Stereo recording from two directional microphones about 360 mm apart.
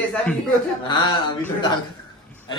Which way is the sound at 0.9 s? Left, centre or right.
Centre.